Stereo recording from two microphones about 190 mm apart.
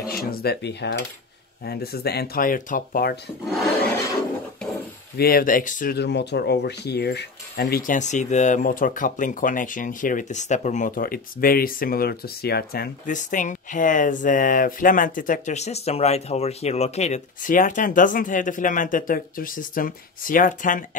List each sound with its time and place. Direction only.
0.0 s speech: 50° left (ahead or behind)
5.1 s speech: 50° left (ahead or behind)